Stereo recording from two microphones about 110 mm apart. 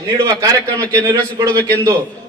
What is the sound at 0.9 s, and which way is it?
Speech, 40° right (ahead or behind).